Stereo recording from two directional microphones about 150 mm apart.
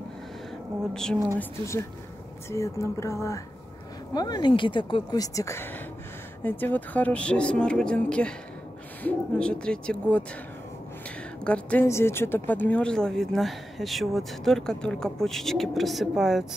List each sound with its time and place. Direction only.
2.5 s speech: 20° left (ahead or behind)
11.4 s speech: 10° left (ahead or behind)